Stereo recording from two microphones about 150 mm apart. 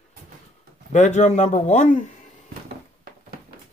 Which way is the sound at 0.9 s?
50° left (ahead or behind).